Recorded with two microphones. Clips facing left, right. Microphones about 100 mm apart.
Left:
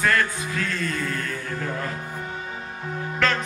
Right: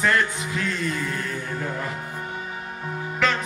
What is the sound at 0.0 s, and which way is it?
Music, 25° right (ahead or behind).